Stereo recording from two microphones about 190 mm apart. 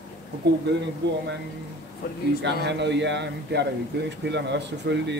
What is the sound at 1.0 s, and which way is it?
Speech, 65° right (ahead or behind).